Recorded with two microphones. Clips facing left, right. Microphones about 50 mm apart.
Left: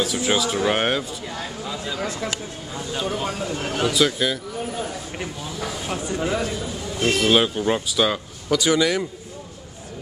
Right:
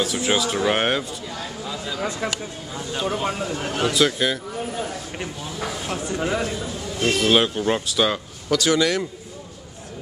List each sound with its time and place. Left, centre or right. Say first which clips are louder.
0.0 s a man's voice: even; centre
2.0 s speech: right 2 dB; centre
2.7 s a man's voice: right 1 dB; centre